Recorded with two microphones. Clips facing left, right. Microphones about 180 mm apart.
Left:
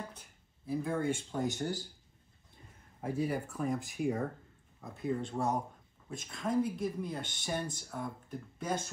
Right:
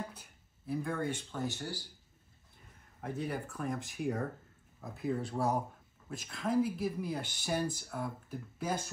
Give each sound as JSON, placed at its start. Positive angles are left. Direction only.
{"t": 0.7, "sound": "speech", "side_deg": 0}
{"t": 1.3, "sound": "speech", "side_deg": 20}
{"t": 3.0, "sound": "speech", "side_deg": 5}